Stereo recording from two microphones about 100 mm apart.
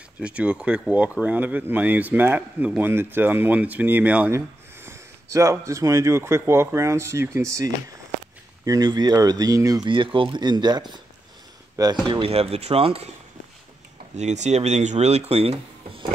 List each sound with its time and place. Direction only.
0.2 s speech: 15° right (ahead or behind)
4.8 s speech: 30° right (ahead or behind)
9.8 s speech: 60° right (ahead or behind); by 12.0 s 40° right (ahead or behind)
12.1 s speech: 75° right (ahead or behind)
14.6 s speech: 90° right